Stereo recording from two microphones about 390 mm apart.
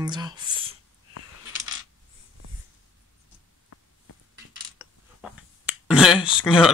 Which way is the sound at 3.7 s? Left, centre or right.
Left.